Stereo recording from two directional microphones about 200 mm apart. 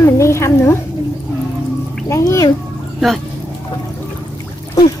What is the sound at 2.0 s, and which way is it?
Speech, 15° left (ahead or behind).